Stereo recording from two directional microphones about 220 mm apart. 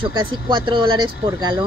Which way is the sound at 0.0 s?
20° right (ahead or behind).